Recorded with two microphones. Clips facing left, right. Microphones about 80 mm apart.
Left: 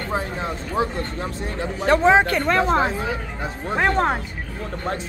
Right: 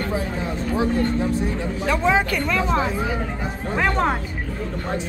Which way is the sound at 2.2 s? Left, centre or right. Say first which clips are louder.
Left 3 dB; left.